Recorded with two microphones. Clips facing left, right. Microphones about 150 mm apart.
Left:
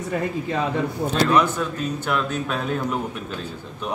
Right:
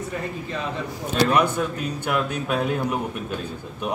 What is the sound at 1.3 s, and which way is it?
A man's voice, 10° right (ahead or behind).